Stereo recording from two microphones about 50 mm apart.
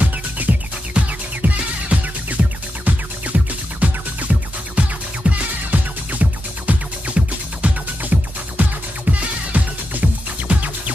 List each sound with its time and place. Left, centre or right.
0.0 s music: right